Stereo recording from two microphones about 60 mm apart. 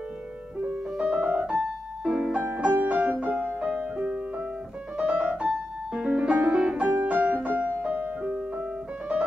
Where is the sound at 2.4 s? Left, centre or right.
Right.